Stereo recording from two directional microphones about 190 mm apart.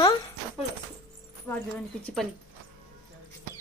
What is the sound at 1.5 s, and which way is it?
Speech, 10° left (ahead or behind).